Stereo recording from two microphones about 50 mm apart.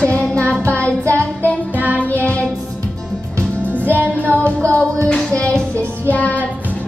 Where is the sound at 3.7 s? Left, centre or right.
Right.